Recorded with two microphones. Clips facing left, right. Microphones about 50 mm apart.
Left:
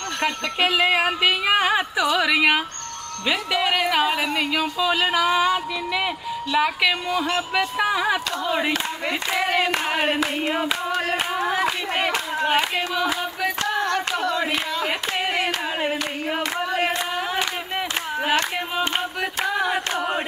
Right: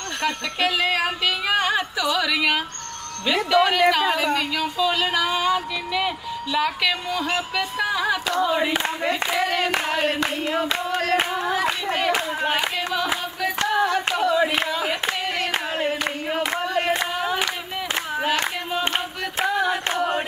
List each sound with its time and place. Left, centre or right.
0.2 s speech: centre
8.4 s speech: centre
13.7 s hands: centre
15.2 s clapping: centre
16.3 s a sound: centre
19.5 s singing: centre
20.0 s speech: centre